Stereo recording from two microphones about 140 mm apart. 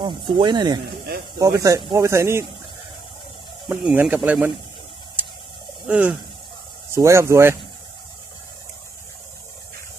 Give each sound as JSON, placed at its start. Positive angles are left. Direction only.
{"t": 0.0, "sound": "speech", "side_deg": -35}
{"t": 3.6, "sound": "speech", "side_deg": -10}
{"t": 5.9, "sound": "speech", "side_deg": -10}
{"t": 6.9, "sound": "speech", "side_deg": -20}